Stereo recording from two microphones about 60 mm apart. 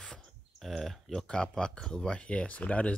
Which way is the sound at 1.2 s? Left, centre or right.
Centre.